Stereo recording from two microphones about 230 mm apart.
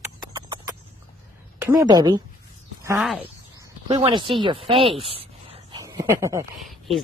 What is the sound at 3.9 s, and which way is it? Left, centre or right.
Speech, right.